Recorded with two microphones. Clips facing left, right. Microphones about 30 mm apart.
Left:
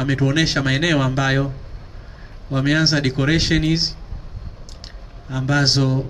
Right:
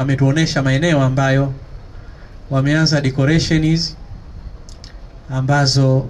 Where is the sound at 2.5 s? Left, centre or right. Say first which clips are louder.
Right 2 dB; centre.